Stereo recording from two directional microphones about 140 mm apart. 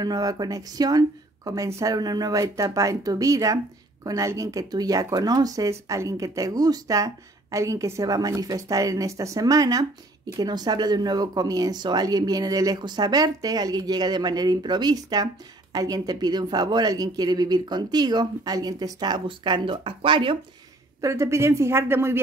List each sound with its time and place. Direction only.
0.0 s speech: 25° right (ahead or behind)
21.0 s speech: 20° right (ahead or behind)